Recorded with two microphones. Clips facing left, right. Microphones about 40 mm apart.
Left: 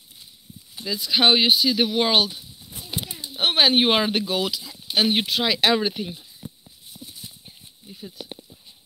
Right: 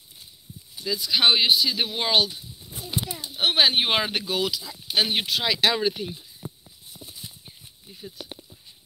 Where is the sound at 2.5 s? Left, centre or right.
Right.